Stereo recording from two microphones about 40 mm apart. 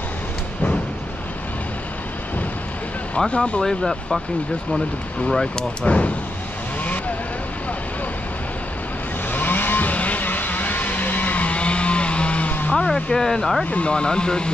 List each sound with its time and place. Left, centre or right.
3.3 s speech: left
3.6 s speech: centre
5.6 s speech: left
9.3 s vehicle: left
12.7 s speech: centre
13.7 s speech: left
13.9 s speech: left